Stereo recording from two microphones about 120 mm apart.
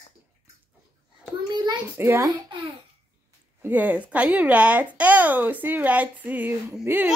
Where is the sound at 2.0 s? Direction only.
20° right (ahead or behind).